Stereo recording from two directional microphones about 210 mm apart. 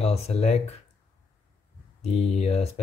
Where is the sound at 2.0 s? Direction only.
30° left (ahead or behind).